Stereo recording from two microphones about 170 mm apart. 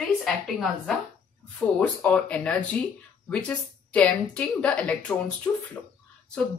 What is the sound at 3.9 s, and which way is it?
A woman's voice, 5° left (ahead or behind).